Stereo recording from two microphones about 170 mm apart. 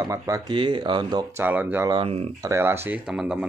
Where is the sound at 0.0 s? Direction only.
20° right (ahead or behind).